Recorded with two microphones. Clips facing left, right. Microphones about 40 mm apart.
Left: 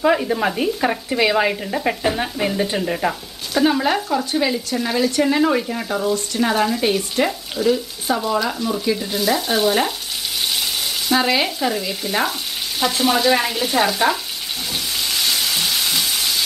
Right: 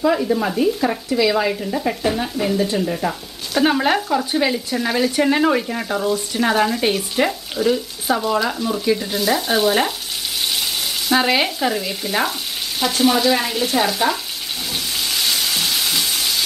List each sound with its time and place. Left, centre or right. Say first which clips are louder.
0.0 s speech: even; left
3.6 s speech: right 1 dB; centre
11.1 s speech: right 1 dB; centre
14.7 s frying: even; centre